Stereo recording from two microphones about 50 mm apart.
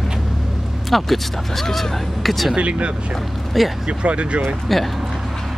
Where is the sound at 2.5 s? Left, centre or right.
Right.